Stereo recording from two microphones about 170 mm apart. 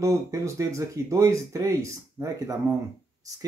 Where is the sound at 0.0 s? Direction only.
20° right (ahead or behind).